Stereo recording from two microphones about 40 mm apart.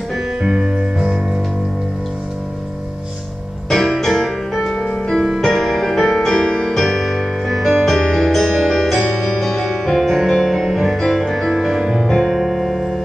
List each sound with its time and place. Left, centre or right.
0.4 s music: centre
3.7 s piano: centre
4.7 s music: centre
8.5 s music: centre
11.0 s music: centre
12.1 s piano: centre